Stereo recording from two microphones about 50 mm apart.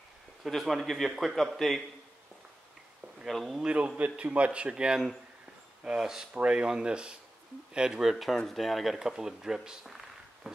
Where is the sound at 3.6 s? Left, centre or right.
Right.